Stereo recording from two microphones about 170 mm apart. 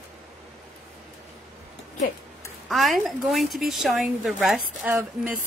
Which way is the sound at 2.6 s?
Centre (ahead or behind).